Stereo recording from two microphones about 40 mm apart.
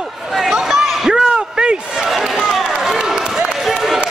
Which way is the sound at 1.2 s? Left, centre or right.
Right.